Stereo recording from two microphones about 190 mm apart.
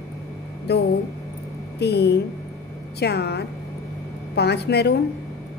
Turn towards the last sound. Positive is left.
turn(degrees=60)  # may be behind; listen again after turning